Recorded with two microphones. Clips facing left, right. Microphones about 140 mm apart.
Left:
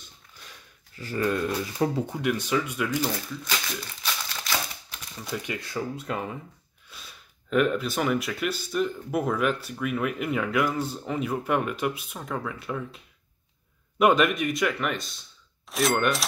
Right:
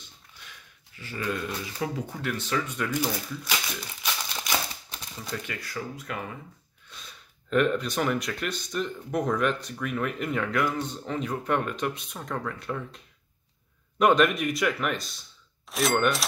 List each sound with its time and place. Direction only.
0.9 s speech: 40° left (ahead or behind)
2.1 s speech: 15° left (ahead or behind)
3.0 s speech: 10° right (ahead or behind)
4.4 s crumpling: 20° right (ahead or behind)
5.5 s speech: 25° left (ahead or behind)
6.9 s speech: 5° left (ahead or behind)